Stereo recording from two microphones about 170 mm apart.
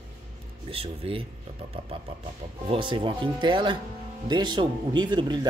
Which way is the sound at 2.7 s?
30° right (ahead or behind).